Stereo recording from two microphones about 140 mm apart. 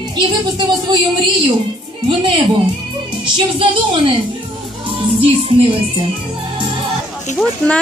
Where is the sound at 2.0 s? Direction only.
35° right (ahead or behind).